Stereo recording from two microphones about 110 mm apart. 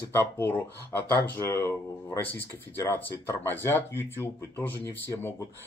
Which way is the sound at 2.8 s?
20° left (ahead or behind).